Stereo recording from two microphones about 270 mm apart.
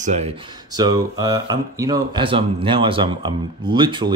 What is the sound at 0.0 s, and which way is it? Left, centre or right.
Speech, right.